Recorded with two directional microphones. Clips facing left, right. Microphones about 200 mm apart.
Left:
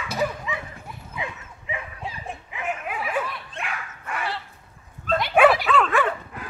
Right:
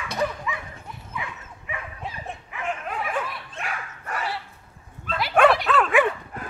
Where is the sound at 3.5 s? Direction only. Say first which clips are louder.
Even; 40° right (ahead or behind).